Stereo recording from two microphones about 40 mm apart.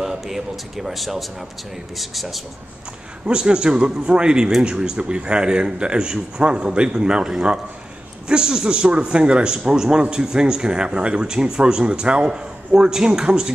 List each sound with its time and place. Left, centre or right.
0.0 s speech: centre
3.3 s speech: right